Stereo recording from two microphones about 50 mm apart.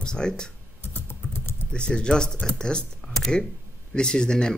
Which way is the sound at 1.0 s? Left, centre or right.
Left.